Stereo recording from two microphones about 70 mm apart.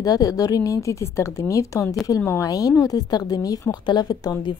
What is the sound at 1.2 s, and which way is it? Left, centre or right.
A woman's voice, left.